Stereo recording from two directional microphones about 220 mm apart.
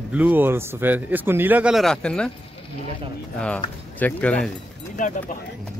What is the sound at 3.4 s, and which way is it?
Speech, 5° left (ahead or behind).